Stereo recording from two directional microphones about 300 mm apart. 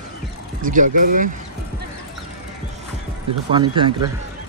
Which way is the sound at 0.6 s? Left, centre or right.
Right.